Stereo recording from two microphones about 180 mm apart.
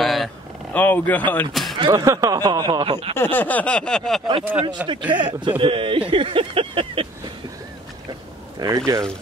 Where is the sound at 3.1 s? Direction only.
10° left (ahead or behind).